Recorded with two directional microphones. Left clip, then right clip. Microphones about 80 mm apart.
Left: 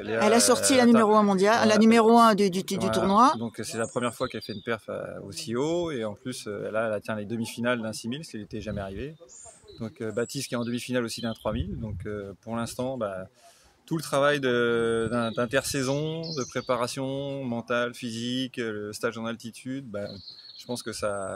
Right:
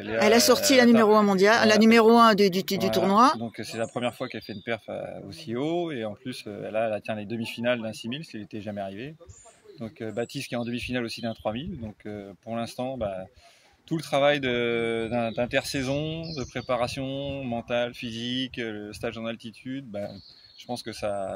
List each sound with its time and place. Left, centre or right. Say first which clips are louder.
0.2 s speech: right 2 dB; centre
3.9 s speech: left 1 dB; left
16.5 s speech: even; left
17.0 s speech: left 1 dB; left